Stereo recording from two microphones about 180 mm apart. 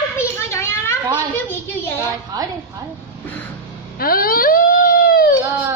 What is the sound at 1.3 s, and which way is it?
Speech, 15° left (ahead or behind).